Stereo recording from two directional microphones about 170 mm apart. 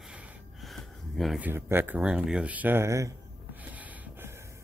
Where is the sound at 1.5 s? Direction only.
15° right (ahead or behind).